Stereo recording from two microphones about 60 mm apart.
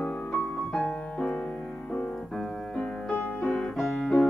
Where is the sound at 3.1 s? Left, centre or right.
Left.